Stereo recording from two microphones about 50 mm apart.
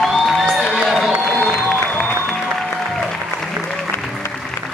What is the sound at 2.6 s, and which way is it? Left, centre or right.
Music, centre.